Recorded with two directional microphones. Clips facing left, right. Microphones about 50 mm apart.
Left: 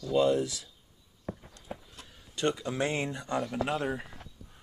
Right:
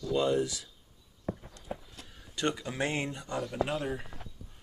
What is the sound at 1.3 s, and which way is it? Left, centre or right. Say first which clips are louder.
Walk: right 3 dB; centre.